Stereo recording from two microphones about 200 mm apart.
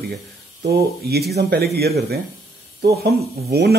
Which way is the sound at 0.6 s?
50° right (ahead or behind).